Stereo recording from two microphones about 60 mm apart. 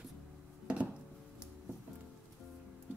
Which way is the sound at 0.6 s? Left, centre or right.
Centre.